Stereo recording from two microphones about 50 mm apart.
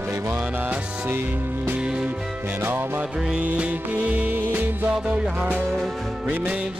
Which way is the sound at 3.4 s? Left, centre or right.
Right.